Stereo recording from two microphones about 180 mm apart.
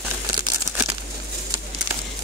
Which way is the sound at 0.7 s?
15° right (ahead or behind).